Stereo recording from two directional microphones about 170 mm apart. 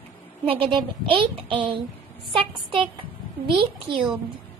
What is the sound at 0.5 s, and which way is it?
A child's voice, 30° right (ahead or behind).